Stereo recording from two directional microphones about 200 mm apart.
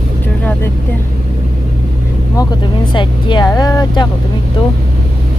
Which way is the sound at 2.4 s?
20° left (ahead or behind).